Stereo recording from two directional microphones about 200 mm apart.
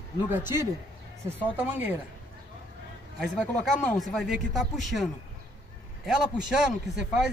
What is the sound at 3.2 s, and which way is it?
Speech, 5° left (ahead or behind).